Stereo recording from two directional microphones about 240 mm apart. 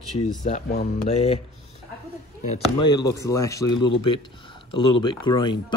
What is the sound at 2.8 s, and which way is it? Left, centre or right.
A man's voice, centre.